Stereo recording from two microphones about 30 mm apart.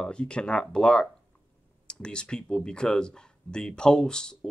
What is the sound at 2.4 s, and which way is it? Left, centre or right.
Speech, left.